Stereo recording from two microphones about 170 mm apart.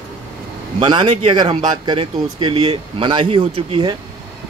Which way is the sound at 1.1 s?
40° right (ahead or behind).